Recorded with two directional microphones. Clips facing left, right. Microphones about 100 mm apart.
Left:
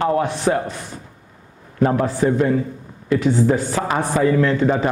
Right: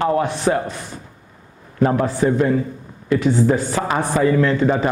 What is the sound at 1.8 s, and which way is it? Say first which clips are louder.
Speech: even; 25° right (ahead or behind).